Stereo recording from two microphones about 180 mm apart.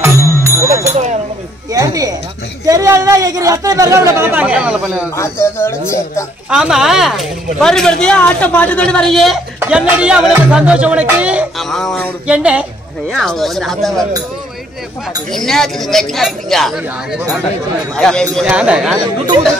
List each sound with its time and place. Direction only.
0.0 s music: 15° right (ahead or behind)
1.7 s a sound: 20° right (ahead or behind)
2.6 s a man's voice: 20° right (ahead or behind)
5.1 s speech: 15° left (ahead or behind)
6.5 s a woman's voice: 5° right (ahead or behind)
15.3 s a woman's voice: centre (ahead or behind)